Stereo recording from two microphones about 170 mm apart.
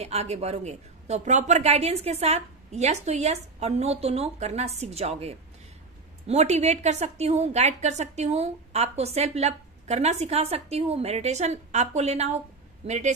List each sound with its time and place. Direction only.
0.0 s a woman's voice: 40° right (ahead or behind)